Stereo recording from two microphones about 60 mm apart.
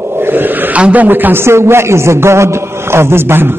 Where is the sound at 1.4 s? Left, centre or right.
Right.